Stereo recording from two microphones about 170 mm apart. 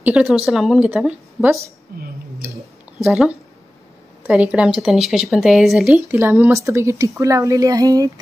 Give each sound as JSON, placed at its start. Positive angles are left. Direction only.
{"t": 0.0, "sound": "speech", "side_deg": -5}
{"t": 3.1, "sound": "speech", "side_deg": -5}
{"t": 5.9, "sound": "speech", "side_deg": -15}